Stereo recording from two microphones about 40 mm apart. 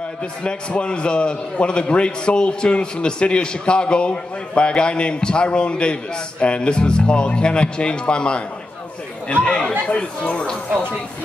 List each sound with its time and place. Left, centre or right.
0.2 s a man's voice: left